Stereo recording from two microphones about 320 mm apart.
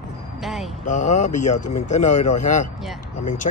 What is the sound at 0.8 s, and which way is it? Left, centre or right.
Speech, left.